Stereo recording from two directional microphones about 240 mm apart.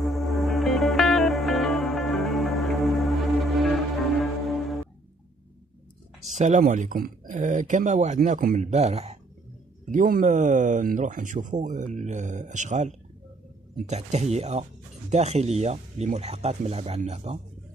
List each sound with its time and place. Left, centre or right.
0.0 s music: centre
6.3 s speech: right